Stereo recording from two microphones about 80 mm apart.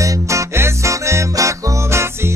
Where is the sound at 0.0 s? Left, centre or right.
Right.